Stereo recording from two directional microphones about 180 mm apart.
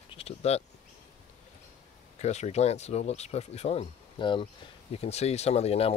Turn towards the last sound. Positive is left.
turn(degrees=35)  # may be behind; listen again after turning